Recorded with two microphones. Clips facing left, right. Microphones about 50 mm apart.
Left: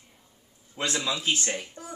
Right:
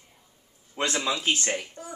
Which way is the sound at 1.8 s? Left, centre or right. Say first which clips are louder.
Right 1 dB; centre.